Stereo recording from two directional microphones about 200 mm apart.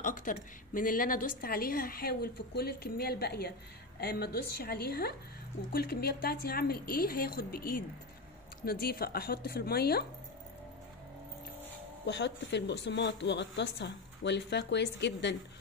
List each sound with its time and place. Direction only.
0.0 s a woman's voice: 40° left (ahead or behind)
12.1 s speech: 60° left (ahead or behind)